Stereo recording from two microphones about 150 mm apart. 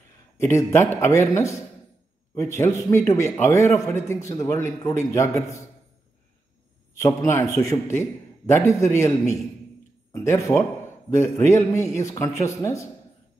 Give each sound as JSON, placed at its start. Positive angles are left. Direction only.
{"t": 0.4, "sound": "a man's voice", "side_deg": 20}
{"t": 7.0, "sound": "a man's voice", "side_deg": 20}